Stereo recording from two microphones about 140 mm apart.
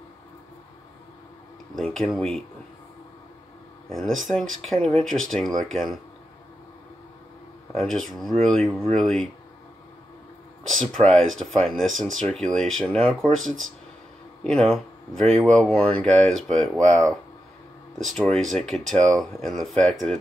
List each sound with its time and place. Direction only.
1.8 s speech: centre (ahead or behind)
3.9 s speech: centre (ahead or behind)
7.7 s speech: centre (ahead or behind)
10.7 s speech: centre (ahead or behind)